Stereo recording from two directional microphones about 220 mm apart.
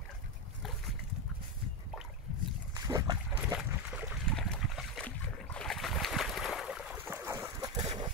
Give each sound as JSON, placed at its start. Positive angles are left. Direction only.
{"t": 2.7, "sound": "boat", "side_deg": -15}
{"t": 3.5, "sound": "trickle", "side_deg": -5}